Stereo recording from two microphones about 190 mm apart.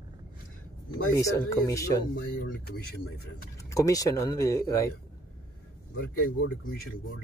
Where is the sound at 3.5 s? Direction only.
15° left (ahead or behind).